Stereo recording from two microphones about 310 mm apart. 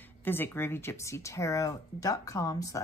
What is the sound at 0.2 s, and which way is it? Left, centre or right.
Speech, centre.